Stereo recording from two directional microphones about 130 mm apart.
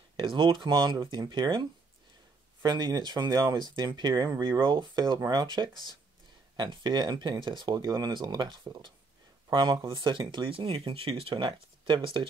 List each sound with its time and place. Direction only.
0.2 s speech: 35° right (ahead or behind)